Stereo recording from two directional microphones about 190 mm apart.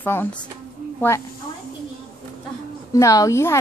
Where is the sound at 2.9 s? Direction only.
20° left (ahead or behind).